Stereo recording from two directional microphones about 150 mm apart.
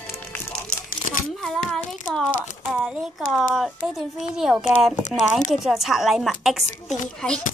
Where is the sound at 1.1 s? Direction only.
55° left (ahead or behind).